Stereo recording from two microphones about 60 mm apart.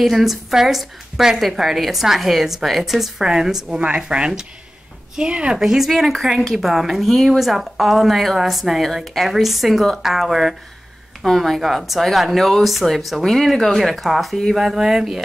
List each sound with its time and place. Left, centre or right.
0.0 s a woman's voice: centre
5.6 s a woman's voice: centre